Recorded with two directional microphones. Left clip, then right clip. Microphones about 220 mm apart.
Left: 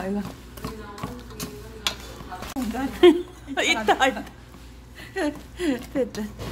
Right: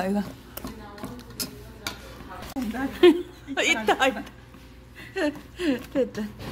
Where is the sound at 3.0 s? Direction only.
5° right (ahead or behind).